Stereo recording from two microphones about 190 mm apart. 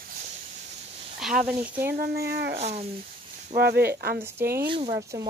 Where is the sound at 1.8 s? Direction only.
55° right (ahead or behind).